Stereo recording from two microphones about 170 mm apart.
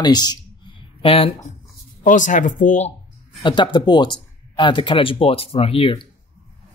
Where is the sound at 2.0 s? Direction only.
50° left (ahead or behind).